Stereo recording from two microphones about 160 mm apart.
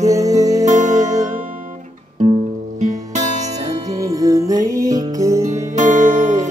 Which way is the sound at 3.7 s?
20° right (ahead or behind).